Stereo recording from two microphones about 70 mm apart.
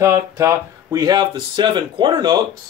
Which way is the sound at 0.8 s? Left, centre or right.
Right.